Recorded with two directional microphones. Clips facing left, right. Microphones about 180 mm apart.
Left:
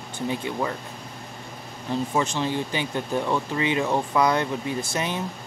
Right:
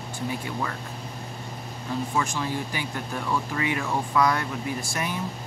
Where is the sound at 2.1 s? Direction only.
20° left (ahead or behind).